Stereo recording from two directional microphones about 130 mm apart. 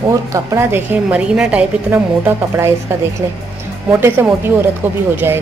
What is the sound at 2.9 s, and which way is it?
A woman's voice, 20° right (ahead or behind).